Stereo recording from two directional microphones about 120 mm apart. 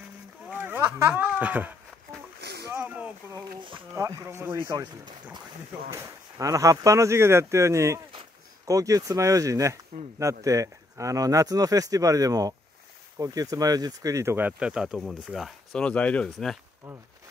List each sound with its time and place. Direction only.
0.5 s a sound: 15° right (ahead or behind)
3.9 s speech: 25° right (ahead or behind)
4.6 s speech: 35° right (ahead or behind)
5.9 s speech: 25° right (ahead or behind); by 16.5 s 5° left (ahead or behind)